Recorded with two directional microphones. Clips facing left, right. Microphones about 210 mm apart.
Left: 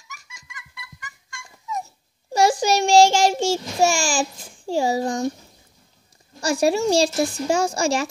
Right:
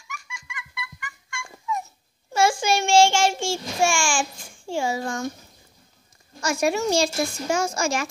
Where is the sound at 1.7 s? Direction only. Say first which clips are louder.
Right 1 dB; 40° left (ahead or behind).